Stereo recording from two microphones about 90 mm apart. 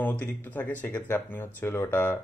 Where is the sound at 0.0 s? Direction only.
20° left (ahead or behind).